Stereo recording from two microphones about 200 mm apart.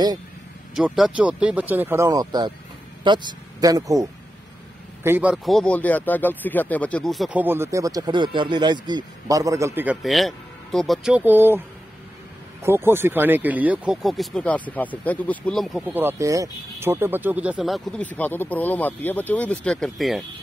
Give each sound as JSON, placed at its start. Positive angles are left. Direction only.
{"t": 0.7, "sound": "speech", "side_deg": -5}
{"t": 12.6, "sound": "speech", "side_deg": -10}